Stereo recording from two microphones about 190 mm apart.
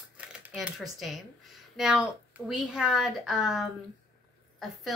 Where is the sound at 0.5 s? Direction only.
Centre (ahead or behind).